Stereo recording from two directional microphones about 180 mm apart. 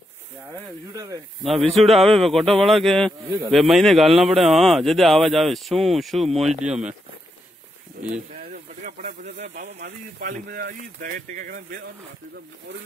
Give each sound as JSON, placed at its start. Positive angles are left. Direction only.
{"t": 0.9, "sound": "speech", "side_deg": -20}
{"t": 1.4, "sound": "speech", "side_deg": 0}
{"t": 3.1, "sound": "speech", "side_deg": -20}
{"t": 3.5, "sound": "speech", "side_deg": 0}
{"t": 8.0, "sound": "a sound", "side_deg": -60}
{"t": 8.4, "sound": "speech", "side_deg": -50}
{"t": 10.2, "sound": "speech", "side_deg": -55}